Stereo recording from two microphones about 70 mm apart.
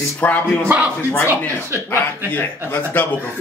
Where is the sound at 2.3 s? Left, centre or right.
Left.